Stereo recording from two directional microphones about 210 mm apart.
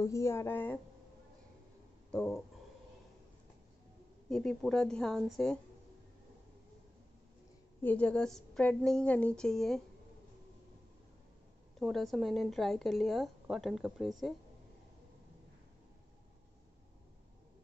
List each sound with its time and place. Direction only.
0.0 s speech: 15° left (ahead or behind)
2.1 s speech: centre (ahead or behind)
4.3 s speech: 5° left (ahead or behind)
7.8 s speech: 5° left (ahead or behind)
11.8 s speech: centre (ahead or behind)